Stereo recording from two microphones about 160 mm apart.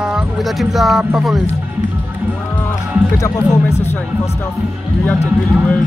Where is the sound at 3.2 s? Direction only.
15° left (ahead or behind).